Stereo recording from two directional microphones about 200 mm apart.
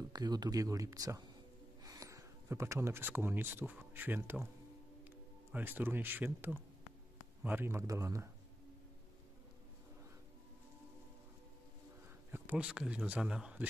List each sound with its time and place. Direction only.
0.1 s speech: 20° right (ahead or behind)
5.5 s speech: 10° right (ahead or behind)
12.3 s speech: 10° right (ahead or behind)